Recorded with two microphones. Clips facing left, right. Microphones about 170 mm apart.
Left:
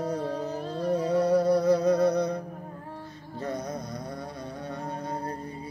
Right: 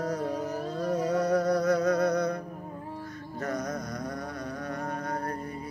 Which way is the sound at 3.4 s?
25° left (ahead or behind).